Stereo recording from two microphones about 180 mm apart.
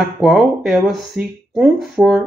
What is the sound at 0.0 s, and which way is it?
Speech, centre (ahead or behind).